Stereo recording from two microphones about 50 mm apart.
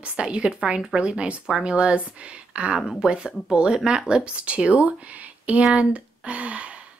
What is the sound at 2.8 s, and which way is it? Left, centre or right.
Speech, centre.